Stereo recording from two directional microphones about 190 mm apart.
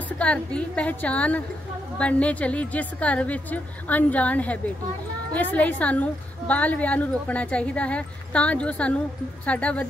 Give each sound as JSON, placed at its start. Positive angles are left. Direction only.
{"t": 0.2, "sound": "a woman's voice", "side_deg": 5}